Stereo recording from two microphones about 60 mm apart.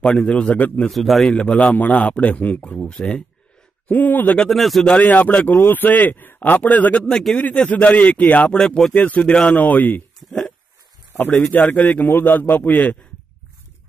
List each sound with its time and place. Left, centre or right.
0.0 s a man's voice: centre
0.8 s a man's voice: centre
1.3 s a man's voice: centre
2.9 s a man's voice: centre
3.8 s a man's voice: left
4.5 s a man's voice: centre
5.0 s a man's voice: left
8.5 s a man's voice: centre
8.9 s a man's voice: left
9.6 s speech: left
11.5 s a man's voice: left